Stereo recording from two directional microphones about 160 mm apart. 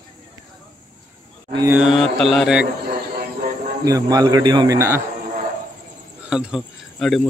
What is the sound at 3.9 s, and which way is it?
A man's voice, 25° right (ahead or behind).